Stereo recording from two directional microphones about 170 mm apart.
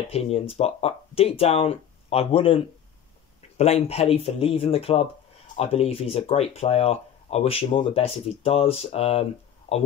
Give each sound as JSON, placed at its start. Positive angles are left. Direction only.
{"t": 0.1, "sound": "speech", "side_deg": 35}